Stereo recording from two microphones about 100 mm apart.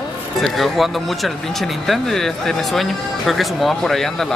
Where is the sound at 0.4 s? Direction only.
Centre (ahead or behind).